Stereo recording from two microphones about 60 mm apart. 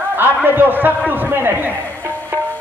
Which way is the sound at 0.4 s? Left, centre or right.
Right.